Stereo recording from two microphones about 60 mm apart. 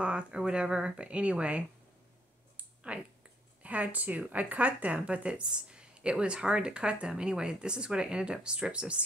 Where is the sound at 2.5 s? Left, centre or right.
Centre.